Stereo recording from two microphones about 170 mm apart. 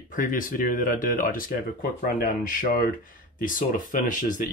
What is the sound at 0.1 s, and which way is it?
Speech, 55° left (ahead or behind).